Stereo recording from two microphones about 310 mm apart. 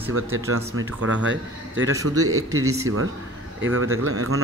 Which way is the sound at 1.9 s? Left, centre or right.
Centre.